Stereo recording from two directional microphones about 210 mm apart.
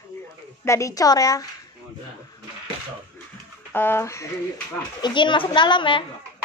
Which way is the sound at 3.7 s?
10° left (ahead or behind).